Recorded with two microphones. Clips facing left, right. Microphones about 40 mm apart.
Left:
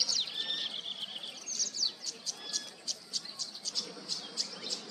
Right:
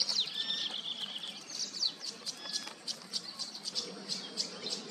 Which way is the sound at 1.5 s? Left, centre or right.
Centre.